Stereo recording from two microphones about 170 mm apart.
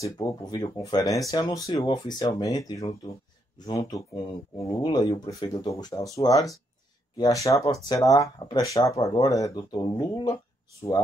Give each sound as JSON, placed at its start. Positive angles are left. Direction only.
{"t": 0.0, "sound": "speech", "side_deg": 25}